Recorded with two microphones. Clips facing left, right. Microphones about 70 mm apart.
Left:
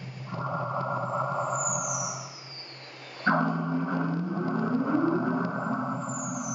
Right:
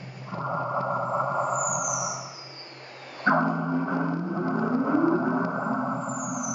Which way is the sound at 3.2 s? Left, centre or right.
Centre.